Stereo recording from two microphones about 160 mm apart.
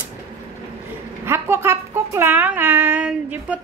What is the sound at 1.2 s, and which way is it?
A woman's voice, 15° right (ahead or behind).